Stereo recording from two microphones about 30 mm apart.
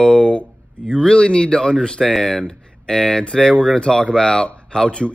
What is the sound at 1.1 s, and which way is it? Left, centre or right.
Speech, left.